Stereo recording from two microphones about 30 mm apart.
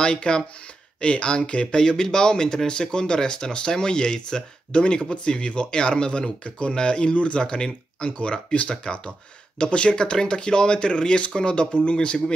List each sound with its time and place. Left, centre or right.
0.0 s speech: left
1.8 s speech: left
7.2 s speech: left
7.4 s speech: left